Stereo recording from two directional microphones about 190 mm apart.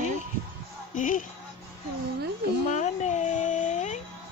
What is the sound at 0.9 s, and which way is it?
Music, 45° left (ahead or behind).